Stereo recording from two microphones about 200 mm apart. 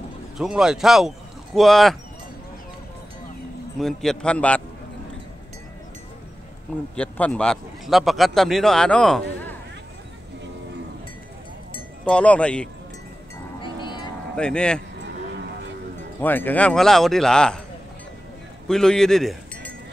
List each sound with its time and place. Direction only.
0.4 s speech: 5° right (ahead or behind)
3.8 s a man's voice: centre (ahead or behind)
7.0 s a man's voice: 5° left (ahead or behind)
12.0 s a man's voice: 5° left (ahead or behind)
13.6 s a sound: 25° left (ahead or behind)
14.3 s a man's voice: 5° left (ahead or behind)
16.2 s a man's voice: 10° left (ahead or behind)
18.7 s speech: 5° left (ahead or behind)